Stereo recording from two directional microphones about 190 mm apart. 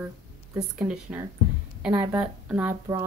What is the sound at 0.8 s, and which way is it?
A woman's voice, 5° right (ahead or behind).